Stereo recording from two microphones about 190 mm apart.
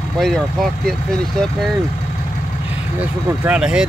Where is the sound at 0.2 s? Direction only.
Centre (ahead or behind).